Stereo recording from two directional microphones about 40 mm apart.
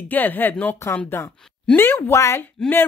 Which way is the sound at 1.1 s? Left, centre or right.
Left.